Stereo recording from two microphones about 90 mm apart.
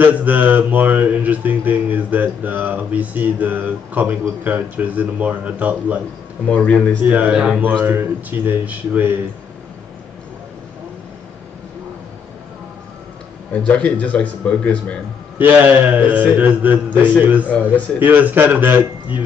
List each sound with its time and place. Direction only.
0.0 s mantra: 20° right (ahead or behind)
6.5 s speech: 15° left (ahead or behind)
7.0 s mantra: 20° right (ahead or behind)
13.5 s speech: 15° left (ahead or behind)
15.3 s mantra: 20° right (ahead or behind)